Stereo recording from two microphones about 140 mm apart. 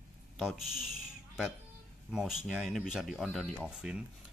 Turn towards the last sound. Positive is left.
turn(degrees=-5)  # may be behind; listen again after turning